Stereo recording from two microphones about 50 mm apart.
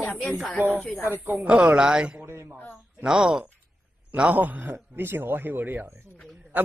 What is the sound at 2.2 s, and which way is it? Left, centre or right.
Speech, right.